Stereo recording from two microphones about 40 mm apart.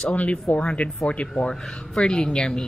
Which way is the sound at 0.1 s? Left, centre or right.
Left.